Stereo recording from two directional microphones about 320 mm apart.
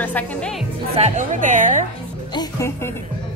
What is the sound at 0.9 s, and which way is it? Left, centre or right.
Speech, right.